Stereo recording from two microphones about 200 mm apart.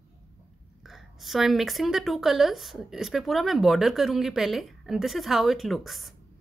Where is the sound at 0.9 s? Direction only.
Centre (ahead or behind).